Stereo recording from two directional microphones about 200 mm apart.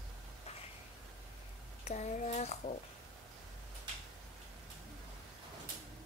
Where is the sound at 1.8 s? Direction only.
35° left (ahead or behind).